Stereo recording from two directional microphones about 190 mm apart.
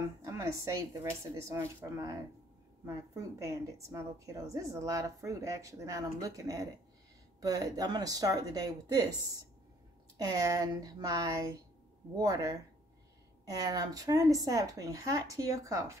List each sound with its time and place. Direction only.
0.2 s a woman's voice: 15° right (ahead or behind)